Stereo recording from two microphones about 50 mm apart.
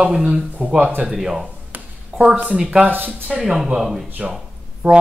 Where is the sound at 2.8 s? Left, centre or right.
Right.